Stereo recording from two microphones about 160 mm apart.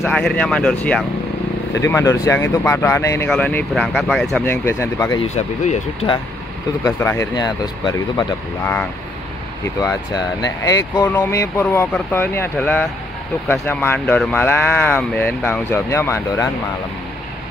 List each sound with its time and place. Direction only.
0.0 s speech: 5° left (ahead or behind)
1.8 s speech: 20° left (ahead or behind)
3.3 s speech: 5° left (ahead or behind)
5.3 s speech: 45° left (ahead or behind)
6.8 s speech: 15° left (ahead or behind)
7.4 s speech: 25° left (ahead or behind)
9.8 s speech: 20° left (ahead or behind)